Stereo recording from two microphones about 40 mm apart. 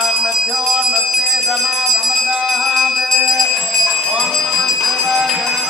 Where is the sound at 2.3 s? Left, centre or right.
Centre.